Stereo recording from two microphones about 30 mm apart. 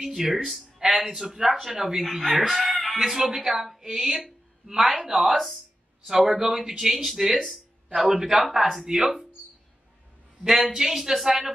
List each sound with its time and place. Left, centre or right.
0.1 s a woman's voice: centre
1.2 s a woman's voice: centre
6.0 s a woman's voice: centre
10.4 s a woman's voice: centre